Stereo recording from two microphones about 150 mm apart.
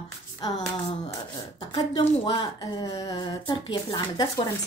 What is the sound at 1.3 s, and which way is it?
Speech, 25° left (ahead or behind).